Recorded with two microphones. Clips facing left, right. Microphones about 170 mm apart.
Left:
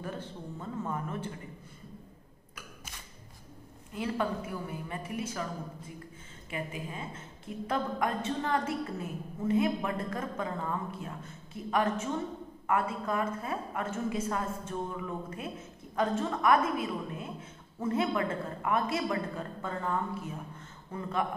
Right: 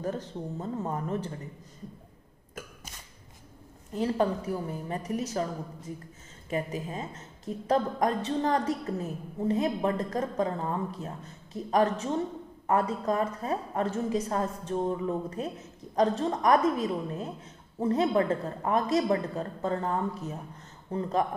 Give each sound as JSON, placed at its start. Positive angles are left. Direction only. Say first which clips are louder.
{"t": 0.0, "sound": "a woman's voice", "louder": "right 6 dB", "side_deg": -40}
{"t": 3.9, "sound": "a woman's voice", "louder": "right 5 dB", "side_deg": -35}
{"t": 6.5, "sound": "a woman's voice", "louder": "right 6 dB", "side_deg": -40}